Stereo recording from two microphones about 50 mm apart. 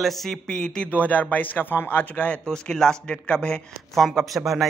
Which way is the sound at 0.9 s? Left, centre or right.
Left.